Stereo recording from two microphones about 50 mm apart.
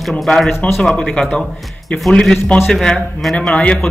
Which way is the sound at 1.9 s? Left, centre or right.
Left.